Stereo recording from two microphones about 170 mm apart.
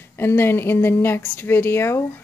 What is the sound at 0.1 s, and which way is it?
A woman's voice, 15° left (ahead or behind).